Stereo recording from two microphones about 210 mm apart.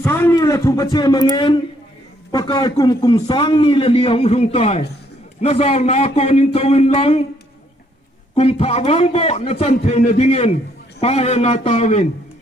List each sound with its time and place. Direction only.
0.0 s a man's voice: 10° left (ahead or behind); by 7.2 s 30° left (ahead or behind)
8.4 s a man's voice: 30° left (ahead or behind)